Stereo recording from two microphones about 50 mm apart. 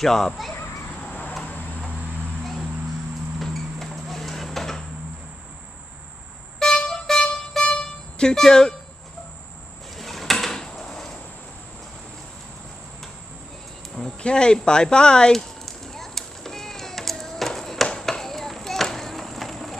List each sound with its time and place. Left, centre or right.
0.0 s speech: centre
3.3 s vehicle: centre
6.6 s music: centre
9.9 s drawer open or close: centre
13.9 s speech: centre
15.6 s a sound: centre